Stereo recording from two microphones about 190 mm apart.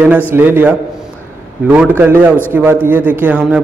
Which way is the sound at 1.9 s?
10° right (ahead or behind).